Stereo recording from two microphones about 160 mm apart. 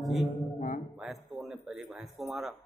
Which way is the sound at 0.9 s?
Centre (ahead or behind).